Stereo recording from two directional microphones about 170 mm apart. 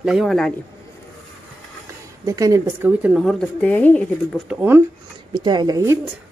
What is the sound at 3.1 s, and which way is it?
Speech, centre (ahead or behind).